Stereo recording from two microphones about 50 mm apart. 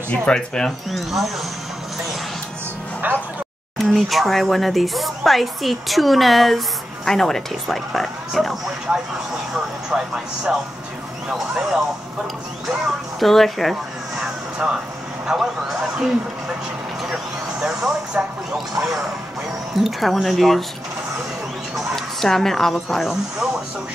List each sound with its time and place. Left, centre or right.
0.1 s speech: left
0.7 s speech: centre
3.0 s speech: right
3.7 s speech: centre
13.2 s speech: centre
14.2 s a sound: centre
15.3 s speech: centre
17.1 s vehicle: centre
18.8 s speech: centre
21.7 s speech: centre